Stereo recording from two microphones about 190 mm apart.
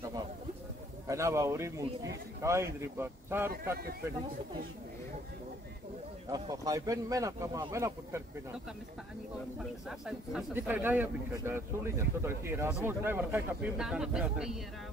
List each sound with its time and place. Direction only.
1.0 s speech: 15° right (ahead or behind)
6.3 s speech: 20° right (ahead or behind)
9.8 s a man's voice: 5° right (ahead or behind)